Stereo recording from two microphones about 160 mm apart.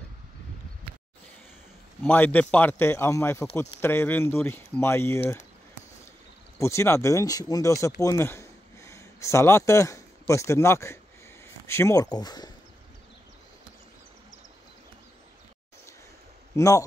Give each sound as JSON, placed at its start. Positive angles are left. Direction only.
{"t": 2.0, "sound": "a man's voice", "side_deg": 10}
{"t": 6.6, "sound": "speech", "side_deg": 15}
{"t": 16.5, "sound": "speech", "side_deg": 20}